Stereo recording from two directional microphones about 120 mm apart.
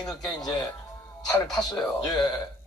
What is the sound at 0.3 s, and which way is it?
Speech, 35° left (ahead or behind).